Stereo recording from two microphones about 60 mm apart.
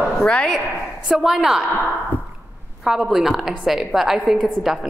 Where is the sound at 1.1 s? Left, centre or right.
Centre.